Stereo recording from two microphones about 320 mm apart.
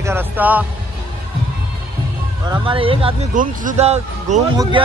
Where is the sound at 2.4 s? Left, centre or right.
Centre.